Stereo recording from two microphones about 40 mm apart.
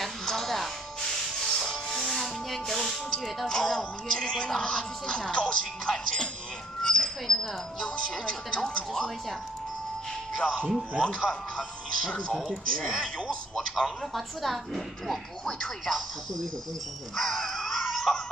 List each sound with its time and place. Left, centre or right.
0.2 s music: centre
6.8 s dog: centre
7.8 s speech: centre
10.3 s speech: left
12.8 s a man's voice: centre
14.1 s a woman's voice: centre
17.1 s a sound: centre